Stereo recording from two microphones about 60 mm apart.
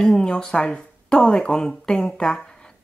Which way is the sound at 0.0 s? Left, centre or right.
Centre.